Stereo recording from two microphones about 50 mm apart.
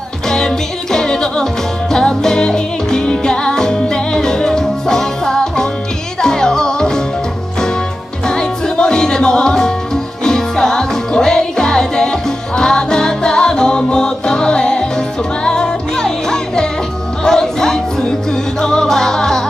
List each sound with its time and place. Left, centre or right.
0.9 s music: centre
8.3 s music: centre